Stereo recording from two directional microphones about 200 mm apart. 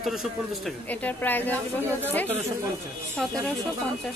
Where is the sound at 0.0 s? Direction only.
Centre (ahead or behind).